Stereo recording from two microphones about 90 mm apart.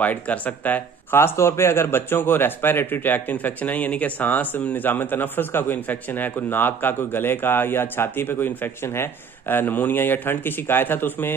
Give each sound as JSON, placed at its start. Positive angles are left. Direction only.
{"t": 0.0, "sound": "speech", "side_deg": 15}